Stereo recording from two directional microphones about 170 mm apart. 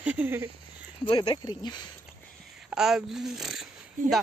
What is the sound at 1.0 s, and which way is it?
Speech, 30° left (ahead or behind).